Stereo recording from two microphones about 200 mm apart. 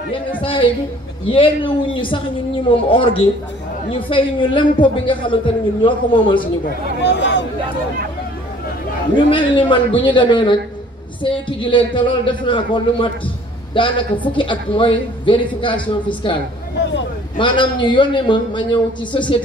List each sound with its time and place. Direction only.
0.4 s a man's voice: 25° left (ahead or behind)
7.0 s speech: 60° left (ahead or behind)
9.1 s a man's voice: 25° left (ahead or behind)
17.4 s a man's voice: 25° left (ahead or behind)